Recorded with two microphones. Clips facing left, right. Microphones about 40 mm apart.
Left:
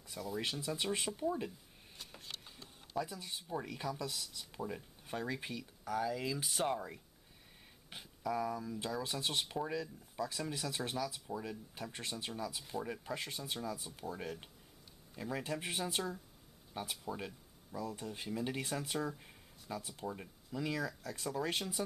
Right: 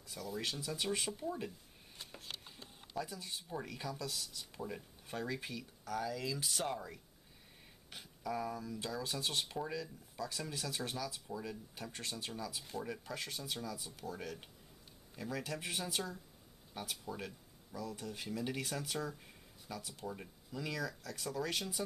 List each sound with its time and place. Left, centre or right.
0.1 s speech: centre
0.4 s speech: centre
3.0 s speech: centre
8.0 s speech: centre
8.6 s speech: centre
12.5 s speech: centre
12.8 s speech: centre